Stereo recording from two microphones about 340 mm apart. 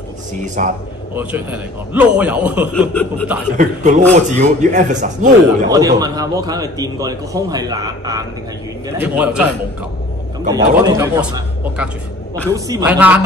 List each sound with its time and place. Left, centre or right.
0.6 s speech: right
1.1 s a man's voice: centre
3.5 s speech: right
5.7 s a man's voice: centre
10.5 s a man's voice: centre